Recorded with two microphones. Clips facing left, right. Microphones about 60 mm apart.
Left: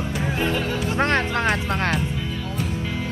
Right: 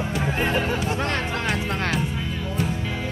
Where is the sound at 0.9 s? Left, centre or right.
Left.